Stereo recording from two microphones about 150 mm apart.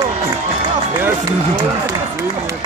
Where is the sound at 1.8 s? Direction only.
20° right (ahead or behind).